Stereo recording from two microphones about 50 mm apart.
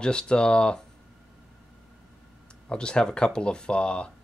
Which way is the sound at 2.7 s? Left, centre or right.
Centre.